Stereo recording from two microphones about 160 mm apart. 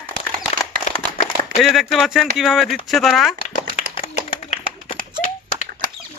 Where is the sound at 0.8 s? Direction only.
50° left (ahead or behind).